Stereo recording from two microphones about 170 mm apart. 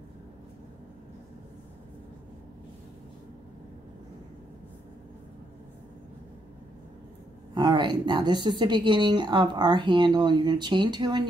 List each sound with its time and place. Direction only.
7.5 s a woman's voice: 25° right (ahead or behind)